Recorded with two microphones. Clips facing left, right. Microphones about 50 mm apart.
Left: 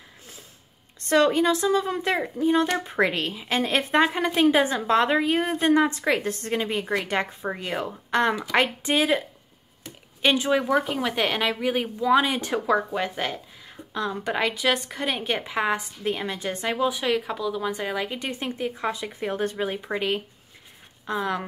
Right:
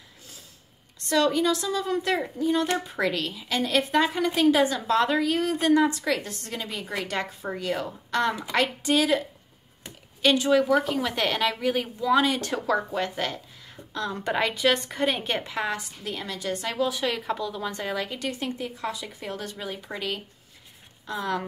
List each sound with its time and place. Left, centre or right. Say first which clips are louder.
1.0 s a woman's voice: left 3 dB; left
10.2 s a woman's voice: right 1 dB; left
21.0 s speech: left 2 dB; centre